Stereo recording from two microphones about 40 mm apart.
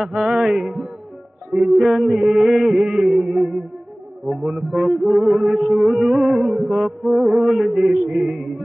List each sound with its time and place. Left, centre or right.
0.0 s music: centre